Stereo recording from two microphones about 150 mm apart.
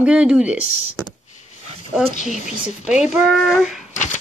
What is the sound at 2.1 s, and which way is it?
Speech, 50° left (ahead or behind).